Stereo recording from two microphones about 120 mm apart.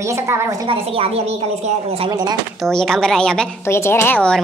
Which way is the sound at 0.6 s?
50° right (ahead or behind).